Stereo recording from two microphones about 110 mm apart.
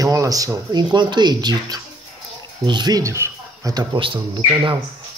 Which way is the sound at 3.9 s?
50° right (ahead or behind).